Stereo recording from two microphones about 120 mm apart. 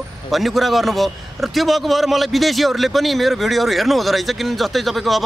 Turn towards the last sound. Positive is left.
turn(degrees=0)  # may be behind; listen again after turning